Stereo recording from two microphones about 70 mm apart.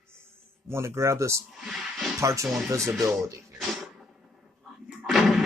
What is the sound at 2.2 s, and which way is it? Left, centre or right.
Speech, right.